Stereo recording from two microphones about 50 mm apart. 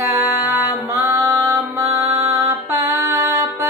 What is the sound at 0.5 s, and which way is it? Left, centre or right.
Mantra, right.